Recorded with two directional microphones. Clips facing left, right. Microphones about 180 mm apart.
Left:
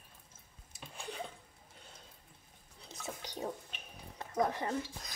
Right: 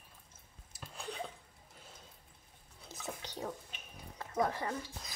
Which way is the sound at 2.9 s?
Centre (ahead or behind).